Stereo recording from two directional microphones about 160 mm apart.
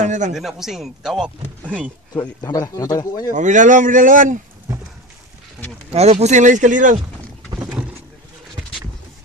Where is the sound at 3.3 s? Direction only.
50° right (ahead or behind).